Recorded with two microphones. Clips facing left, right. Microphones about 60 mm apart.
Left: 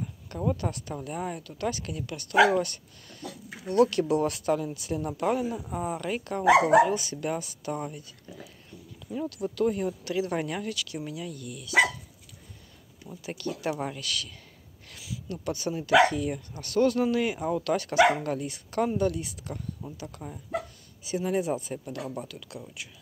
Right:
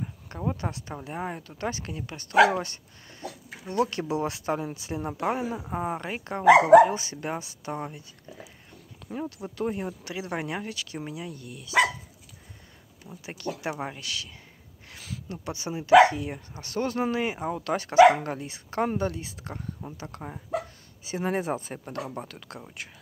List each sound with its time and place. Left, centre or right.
0.0 s speech: right
13.1 s speech: right